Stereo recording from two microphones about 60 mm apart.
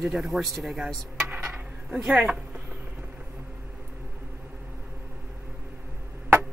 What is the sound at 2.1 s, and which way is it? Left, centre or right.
Speech, centre.